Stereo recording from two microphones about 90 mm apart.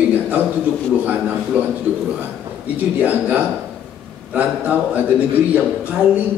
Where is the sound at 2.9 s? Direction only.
15° right (ahead or behind).